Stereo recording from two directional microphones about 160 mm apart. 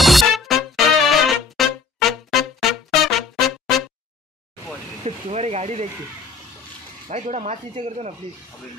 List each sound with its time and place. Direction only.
0.0 s music: centre (ahead or behind)
5.0 s speech: 40° right (ahead or behind)
7.1 s speech: 45° right (ahead or behind)